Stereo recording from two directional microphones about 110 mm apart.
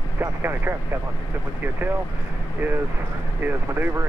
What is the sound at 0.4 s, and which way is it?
Speech, 20° right (ahead or behind).